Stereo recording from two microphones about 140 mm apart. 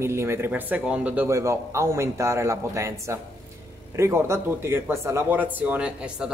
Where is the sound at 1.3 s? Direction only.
20° right (ahead or behind).